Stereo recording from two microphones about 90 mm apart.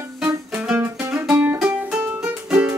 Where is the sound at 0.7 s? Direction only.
10° right (ahead or behind).